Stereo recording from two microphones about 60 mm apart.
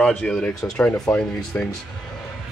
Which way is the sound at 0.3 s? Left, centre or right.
Centre.